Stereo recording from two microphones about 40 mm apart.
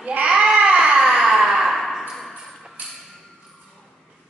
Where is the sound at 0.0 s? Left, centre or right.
Right.